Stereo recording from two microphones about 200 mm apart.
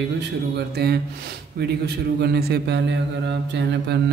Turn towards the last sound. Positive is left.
turn(degrees=-60)  # may be behind; listen again after turning